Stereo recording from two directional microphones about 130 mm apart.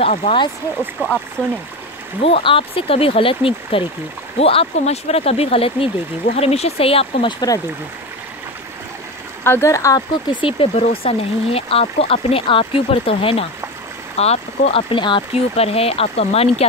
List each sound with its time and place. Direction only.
0.0 s speech: 50° left (ahead or behind)
0.7 s speech: 10° left (ahead or behind)
2.2 s speech: 45° left (ahead or behind)
7.3 s speech: 30° left (ahead or behind)
9.4 s speech: 20° left (ahead or behind)
10.3 s speech: 45° left (ahead or behind)